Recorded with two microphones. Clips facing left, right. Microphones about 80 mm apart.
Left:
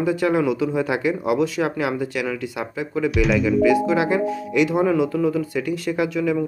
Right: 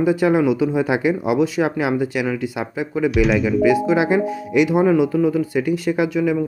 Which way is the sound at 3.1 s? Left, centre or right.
Centre.